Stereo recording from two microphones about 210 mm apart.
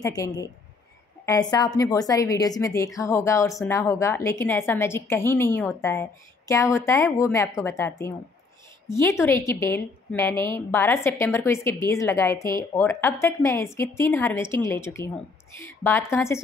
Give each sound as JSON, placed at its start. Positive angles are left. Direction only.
{"t": 0.0, "sound": "a woman's voice", "side_deg": 15}
{"t": 9.2, "sound": "a woman's voice", "side_deg": 10}